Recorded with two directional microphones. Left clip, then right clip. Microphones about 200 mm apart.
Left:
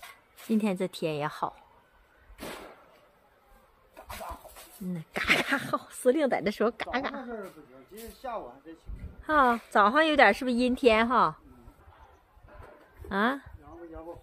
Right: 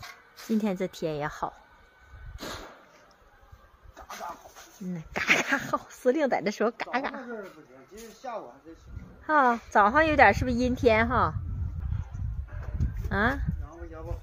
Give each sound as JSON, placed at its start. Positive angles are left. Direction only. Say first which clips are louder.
{"t": 0.5, "sound": "speech", "louder": "even", "side_deg": 0}
{"t": 3.9, "sound": "a sound", "louder": "right 2 dB", "side_deg": 45}
{"t": 4.9, "sound": "speech", "louder": "right 1 dB", "side_deg": 0}
{"t": 7.9, "sound": "speech", "louder": "even", "side_deg": 35}
{"t": 9.2, "sound": "speech", "louder": "right 1 dB", "side_deg": 0}
{"t": 13.1, "sound": "speech", "louder": "right 1 dB", "side_deg": 0}